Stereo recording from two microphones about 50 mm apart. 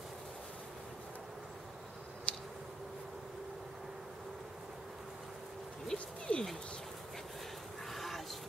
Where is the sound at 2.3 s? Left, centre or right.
Left.